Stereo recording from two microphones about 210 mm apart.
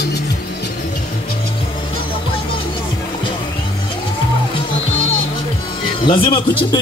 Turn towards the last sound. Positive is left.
turn(degrees=25)  # may be behind; listen again after turning